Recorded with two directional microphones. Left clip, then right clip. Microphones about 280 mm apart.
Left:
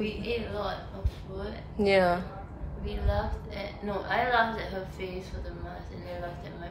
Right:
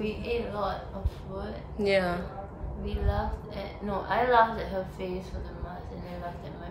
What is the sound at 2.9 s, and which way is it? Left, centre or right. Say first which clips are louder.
A woman's voice: even; centre.